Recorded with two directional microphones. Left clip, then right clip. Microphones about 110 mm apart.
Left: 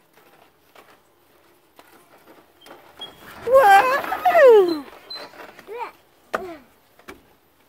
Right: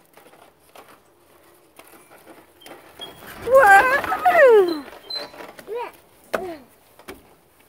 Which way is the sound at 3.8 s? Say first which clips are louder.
Right 1 dB; 45° left (ahead or behind).